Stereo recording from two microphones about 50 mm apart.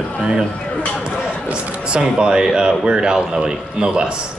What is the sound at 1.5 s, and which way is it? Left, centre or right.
A man's voice, centre.